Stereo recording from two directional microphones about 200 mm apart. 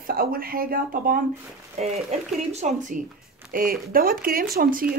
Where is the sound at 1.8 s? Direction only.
35° right (ahead or behind).